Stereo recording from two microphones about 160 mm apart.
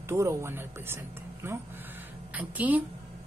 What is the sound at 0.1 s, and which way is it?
Speech, 15° right (ahead or behind).